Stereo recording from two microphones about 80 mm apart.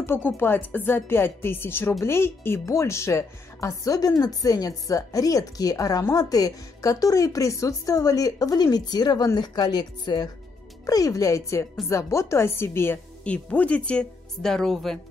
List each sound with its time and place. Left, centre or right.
0.0 s a woman's voice: left
10.9 s a woman's voice: left
13.2 s speech: centre